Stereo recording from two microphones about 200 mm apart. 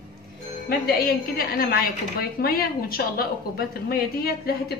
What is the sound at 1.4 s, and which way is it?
A woman's voice, 50° left (ahead or behind).